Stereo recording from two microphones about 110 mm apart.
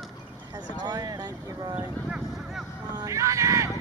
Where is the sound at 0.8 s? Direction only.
35° right (ahead or behind).